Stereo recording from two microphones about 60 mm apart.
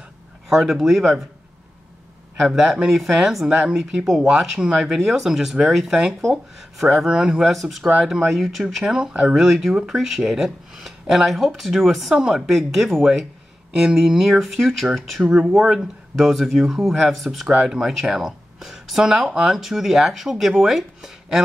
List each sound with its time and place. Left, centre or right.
0.5 s speech: centre
2.4 s speech: centre
8.8 s speech: centre
9.4 s speech: centre
17.5 s speech: centre